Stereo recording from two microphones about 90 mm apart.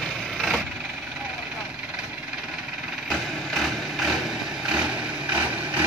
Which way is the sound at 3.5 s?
5° right (ahead or behind).